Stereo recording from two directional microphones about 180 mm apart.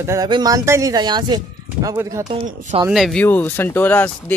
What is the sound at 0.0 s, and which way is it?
Speech, 20° right (ahead or behind).